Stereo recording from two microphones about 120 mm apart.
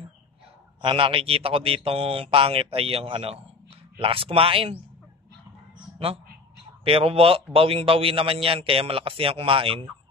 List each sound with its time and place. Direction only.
0.8 s a man's voice: 45° right (ahead or behind)
6.8 s a man's voice: 50° right (ahead or behind)